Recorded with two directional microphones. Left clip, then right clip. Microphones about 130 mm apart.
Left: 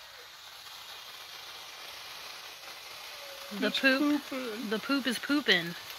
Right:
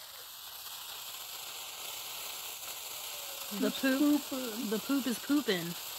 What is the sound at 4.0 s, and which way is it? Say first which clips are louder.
Speech: even; 40° right (ahead or behind).